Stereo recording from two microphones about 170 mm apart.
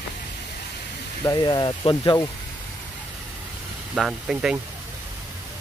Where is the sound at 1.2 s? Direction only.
25° left (ahead or behind).